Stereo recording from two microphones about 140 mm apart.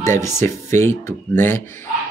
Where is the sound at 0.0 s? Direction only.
20° left (ahead or behind).